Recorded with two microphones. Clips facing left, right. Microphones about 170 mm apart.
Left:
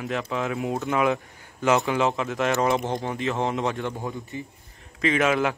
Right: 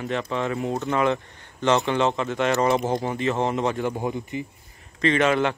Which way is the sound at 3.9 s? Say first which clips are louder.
Right 5 dB; 15° right (ahead or behind).